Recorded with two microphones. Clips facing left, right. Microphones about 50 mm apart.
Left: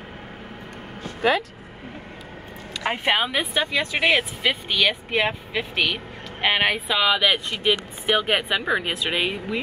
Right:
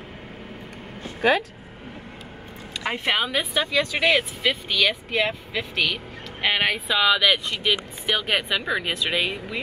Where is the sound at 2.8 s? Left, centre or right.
Centre.